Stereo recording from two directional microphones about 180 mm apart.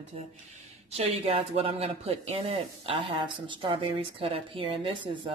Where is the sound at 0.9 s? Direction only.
35° right (ahead or behind).